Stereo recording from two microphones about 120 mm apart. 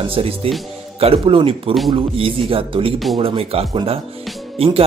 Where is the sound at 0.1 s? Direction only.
50° right (ahead or behind).